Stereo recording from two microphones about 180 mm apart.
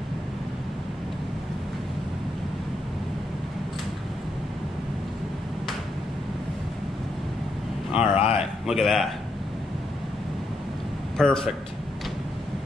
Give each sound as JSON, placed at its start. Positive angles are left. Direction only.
{"t": 8.0, "sound": "a sound", "side_deg": 30}
{"t": 8.6, "sound": "a man's voice", "side_deg": 0}
{"t": 11.1, "sound": "a man's voice", "side_deg": 5}